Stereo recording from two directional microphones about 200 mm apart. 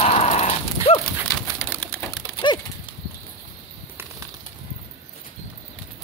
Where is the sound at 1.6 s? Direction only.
10° left (ahead or behind).